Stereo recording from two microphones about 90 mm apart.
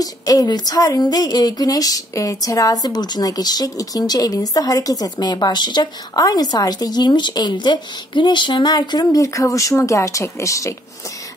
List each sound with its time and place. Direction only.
0.0 s speech: 45° left (ahead or behind)